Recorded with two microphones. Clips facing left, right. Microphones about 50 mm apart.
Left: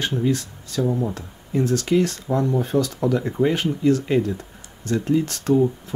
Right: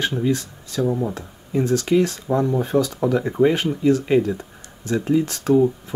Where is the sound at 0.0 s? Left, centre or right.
Centre.